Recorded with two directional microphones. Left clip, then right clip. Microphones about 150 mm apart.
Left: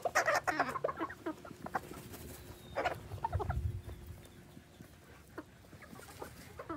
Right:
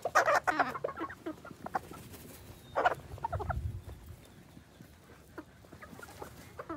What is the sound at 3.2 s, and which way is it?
Fowl, 5° right (ahead or behind).